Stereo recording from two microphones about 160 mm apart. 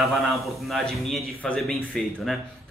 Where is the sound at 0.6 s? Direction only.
Centre (ahead or behind).